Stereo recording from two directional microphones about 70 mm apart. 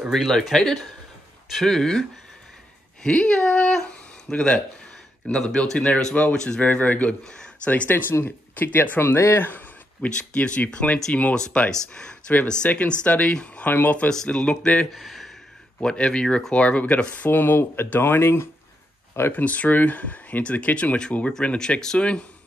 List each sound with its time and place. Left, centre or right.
0.1 s speech: centre
6.6 s speech: left
7.7 s speech: left
9.1 s speech: left
10.0 s speech: centre
14.9 s a sound: centre
15.8 s speech: centre; by 18.5 s left
19.3 s speech: left